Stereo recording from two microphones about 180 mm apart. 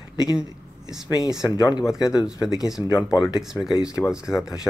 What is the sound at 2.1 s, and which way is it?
Speech, 20° left (ahead or behind).